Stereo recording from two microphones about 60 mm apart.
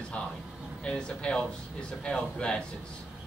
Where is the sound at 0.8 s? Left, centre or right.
Centre.